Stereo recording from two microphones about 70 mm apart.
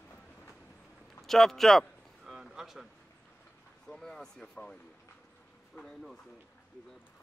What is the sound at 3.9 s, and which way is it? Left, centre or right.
Speech, centre.